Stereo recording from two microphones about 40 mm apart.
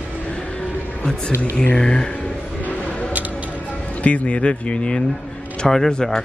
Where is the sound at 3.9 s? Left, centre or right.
Left.